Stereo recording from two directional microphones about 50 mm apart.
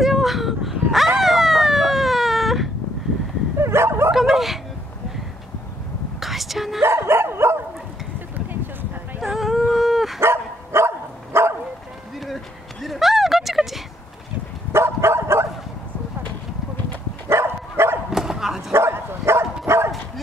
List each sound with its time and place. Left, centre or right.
0.0 s a sound: centre
3.5 s dog: right
4.1 s dog: centre
6.1 s whispering: centre
6.8 s dog: right
9.2 s dog: centre
10.2 s dog: right
11.3 s bow-wow: right
12.8 s a sound: centre
14.7 s bow-wow: right
17.3 s dog: right
18.1 s bow-wow: centre
18.7 s dog: right